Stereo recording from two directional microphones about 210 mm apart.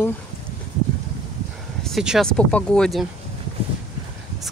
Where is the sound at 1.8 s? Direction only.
Centre (ahead or behind).